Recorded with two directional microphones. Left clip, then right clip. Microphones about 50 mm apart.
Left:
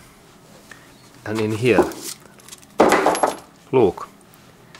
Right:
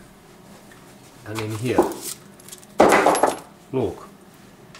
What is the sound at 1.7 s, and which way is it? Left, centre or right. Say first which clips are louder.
Keys jangling: left 3 dB; centre.